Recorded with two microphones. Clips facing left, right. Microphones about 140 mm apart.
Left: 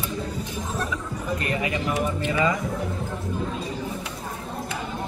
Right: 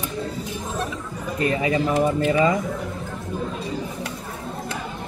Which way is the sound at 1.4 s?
30° right (ahead or behind).